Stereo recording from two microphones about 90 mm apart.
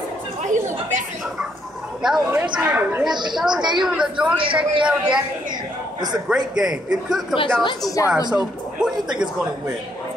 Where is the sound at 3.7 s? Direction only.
10° right (ahead or behind).